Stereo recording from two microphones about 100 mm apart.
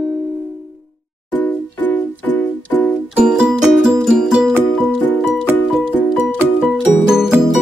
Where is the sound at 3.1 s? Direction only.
5° right (ahead or behind).